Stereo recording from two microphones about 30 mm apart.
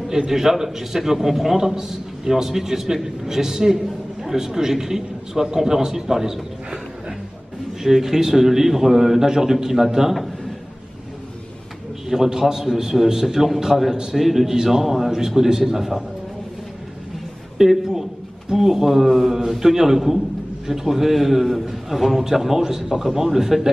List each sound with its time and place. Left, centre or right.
0.3 s a man's voice: centre
12.1 s a man's voice: centre
17.6 s a man's voice: centre